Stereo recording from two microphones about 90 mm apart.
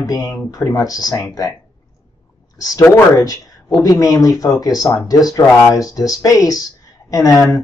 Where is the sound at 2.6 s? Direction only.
45° left (ahead or behind).